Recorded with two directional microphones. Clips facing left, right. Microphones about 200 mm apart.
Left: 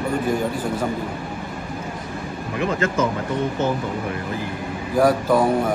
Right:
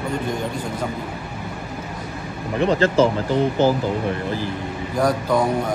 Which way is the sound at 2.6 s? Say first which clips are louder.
Right 5 dB; 30° right (ahead or behind).